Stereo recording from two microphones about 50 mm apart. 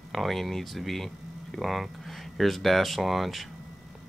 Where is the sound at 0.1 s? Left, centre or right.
Centre.